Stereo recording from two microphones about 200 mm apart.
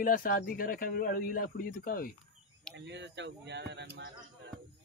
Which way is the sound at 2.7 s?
60° right (ahead or behind).